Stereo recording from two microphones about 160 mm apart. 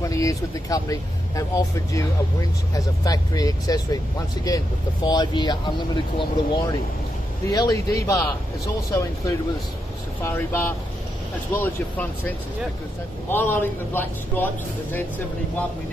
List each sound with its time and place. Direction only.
0.0 s speech: 20° left (ahead or behind)
5.0 s speech: 25° left (ahead or behind)
10.2 s a man's voice: 15° left (ahead or behind)